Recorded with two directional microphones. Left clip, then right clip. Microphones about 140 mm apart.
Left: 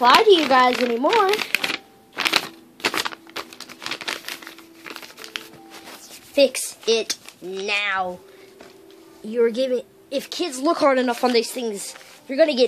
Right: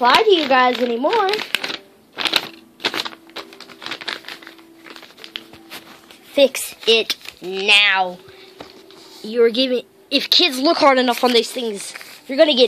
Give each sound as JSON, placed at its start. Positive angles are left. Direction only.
{"t": 0.0, "sound": "speech", "side_deg": 5}
{"t": 1.0, "sound": "speech", "side_deg": 20}
{"t": 1.6, "sound": "a sound", "side_deg": 15}
{"t": 3.0, "sound": "crumpling", "side_deg": 25}
{"t": 6.3, "sound": "a woman's voice", "side_deg": -15}
{"t": 6.9, "sound": "speech", "side_deg": 0}
{"t": 7.6, "sound": "speech", "side_deg": -15}
{"t": 9.3, "sound": "speech", "side_deg": -20}
{"t": 10.7, "sound": "speech", "side_deg": -5}